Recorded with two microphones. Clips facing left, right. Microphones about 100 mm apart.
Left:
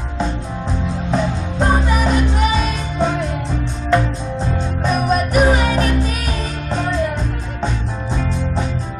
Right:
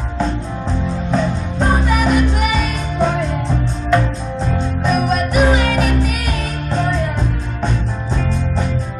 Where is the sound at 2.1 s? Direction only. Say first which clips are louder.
Right 1 dB; 30° left (ahead or behind).